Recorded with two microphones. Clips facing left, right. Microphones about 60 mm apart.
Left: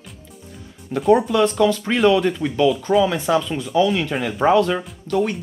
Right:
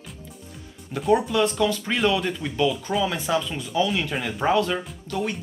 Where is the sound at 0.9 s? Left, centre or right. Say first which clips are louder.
Left 5 dB; centre.